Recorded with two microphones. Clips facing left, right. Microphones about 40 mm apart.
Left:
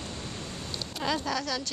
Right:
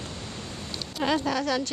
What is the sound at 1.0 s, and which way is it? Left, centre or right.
Speech, right.